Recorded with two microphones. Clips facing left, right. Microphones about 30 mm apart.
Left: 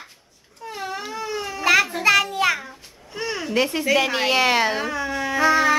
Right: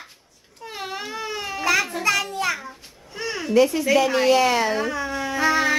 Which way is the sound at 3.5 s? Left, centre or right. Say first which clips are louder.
Right 5 dB; left.